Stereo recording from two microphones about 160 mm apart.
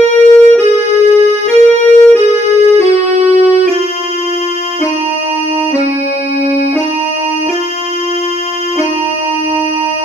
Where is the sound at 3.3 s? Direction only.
15° left (ahead or behind).